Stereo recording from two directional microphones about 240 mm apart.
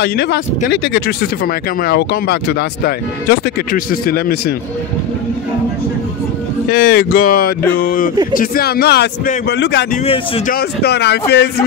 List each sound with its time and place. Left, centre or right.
0.0 s speech: left
6.7 s speech: left
10.0 s speech: left
10.5 s speech: left